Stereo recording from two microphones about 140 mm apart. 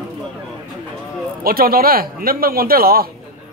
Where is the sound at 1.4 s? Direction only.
90° right.